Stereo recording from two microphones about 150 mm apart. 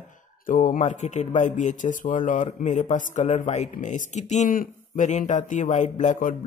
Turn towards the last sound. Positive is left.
turn(degrees=55)  # may be behind; listen again after turning